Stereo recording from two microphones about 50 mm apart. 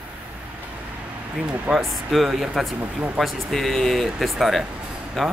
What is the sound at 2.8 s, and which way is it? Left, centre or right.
Speech, right.